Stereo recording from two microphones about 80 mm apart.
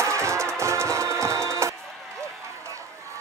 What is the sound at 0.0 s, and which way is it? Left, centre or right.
Music, right.